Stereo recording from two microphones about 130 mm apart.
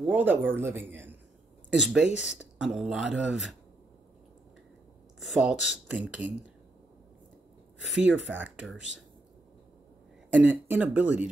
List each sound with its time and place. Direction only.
0.0 s speech: 10° right (ahead or behind)
1.7 s speech: 5° right (ahead or behind)
5.3 s speech: 5° right (ahead or behind)
8.3 s speech: 10° right (ahead or behind)
10.4 s speech: 10° right (ahead or behind)